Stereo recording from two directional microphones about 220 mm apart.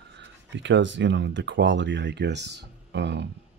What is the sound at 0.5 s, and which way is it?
Speech, 55° right (ahead or behind).